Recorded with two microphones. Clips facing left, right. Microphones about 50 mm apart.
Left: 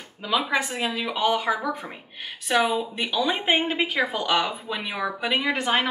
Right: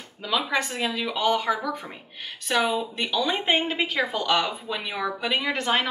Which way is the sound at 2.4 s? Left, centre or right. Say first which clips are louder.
Left 2 dB; centre.